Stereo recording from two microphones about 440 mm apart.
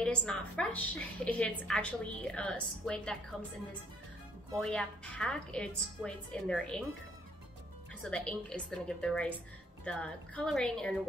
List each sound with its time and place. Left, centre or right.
0.0 s a woman's voice: centre
4.5 s a woman's voice: centre
8.0 s a woman's voice: centre